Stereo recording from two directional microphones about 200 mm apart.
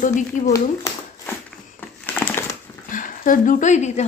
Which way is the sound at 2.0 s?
10° left (ahead or behind).